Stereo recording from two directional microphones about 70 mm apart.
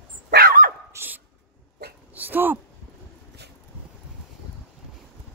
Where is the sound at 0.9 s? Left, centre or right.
Right.